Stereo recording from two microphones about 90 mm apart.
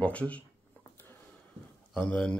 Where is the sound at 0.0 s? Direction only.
15° left (ahead or behind).